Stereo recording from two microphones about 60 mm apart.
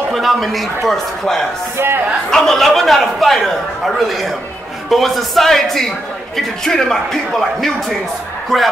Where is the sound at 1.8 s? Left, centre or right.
Right.